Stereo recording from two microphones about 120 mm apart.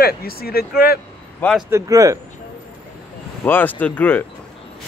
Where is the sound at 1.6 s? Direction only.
25° right (ahead or behind).